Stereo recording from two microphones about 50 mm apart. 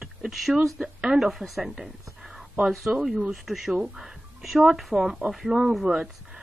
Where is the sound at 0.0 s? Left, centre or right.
Centre.